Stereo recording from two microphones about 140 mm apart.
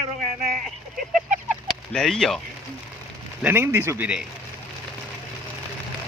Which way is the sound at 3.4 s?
15° right (ahead or behind).